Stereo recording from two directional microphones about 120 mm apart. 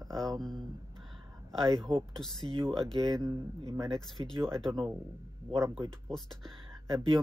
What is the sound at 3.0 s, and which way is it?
Speech, 30° right (ahead or behind).